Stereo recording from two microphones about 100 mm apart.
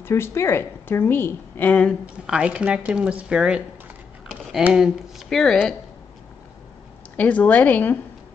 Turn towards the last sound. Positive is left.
turn(degrees=15)  # may be behind; listen again after turning